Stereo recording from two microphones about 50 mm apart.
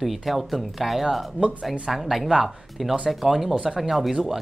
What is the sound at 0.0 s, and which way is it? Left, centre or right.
Speech, centre.